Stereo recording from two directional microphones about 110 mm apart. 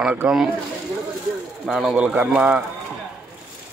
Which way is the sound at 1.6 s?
5° right (ahead or behind).